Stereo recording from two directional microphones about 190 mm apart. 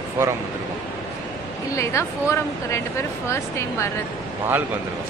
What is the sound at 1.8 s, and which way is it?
Speech, 15° left (ahead or behind).